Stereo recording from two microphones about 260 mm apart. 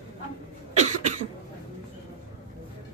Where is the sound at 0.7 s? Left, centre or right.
Right.